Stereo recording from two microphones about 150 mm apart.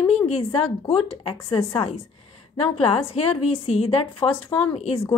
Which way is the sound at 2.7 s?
40° left (ahead or behind).